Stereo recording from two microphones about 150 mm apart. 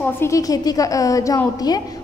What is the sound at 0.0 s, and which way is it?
A woman's voice, 20° left (ahead or behind).